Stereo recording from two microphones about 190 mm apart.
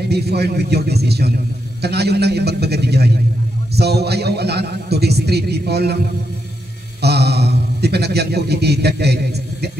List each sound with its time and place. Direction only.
0.1 s speech: 60° right (ahead or behind)
7.0 s speech: 60° right (ahead or behind)